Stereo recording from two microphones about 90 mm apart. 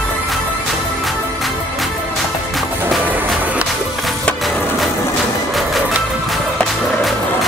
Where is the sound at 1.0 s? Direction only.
Centre (ahead or behind).